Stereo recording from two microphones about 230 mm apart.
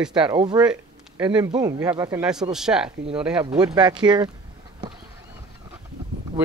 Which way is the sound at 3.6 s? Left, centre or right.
Centre.